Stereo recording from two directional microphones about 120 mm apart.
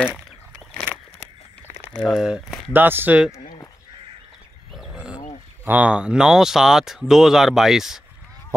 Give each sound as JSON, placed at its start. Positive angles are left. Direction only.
{"t": 2.0, "sound": "speech", "side_deg": 0}
{"t": 2.7, "sound": "speech", "side_deg": -15}
{"t": 4.7, "sound": "a sound", "side_deg": -5}
{"t": 5.7, "sound": "speech", "side_deg": -10}